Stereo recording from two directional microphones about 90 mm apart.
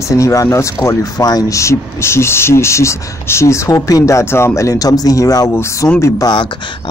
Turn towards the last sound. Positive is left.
turn(degrees=30)  # may be behind; listen again after turning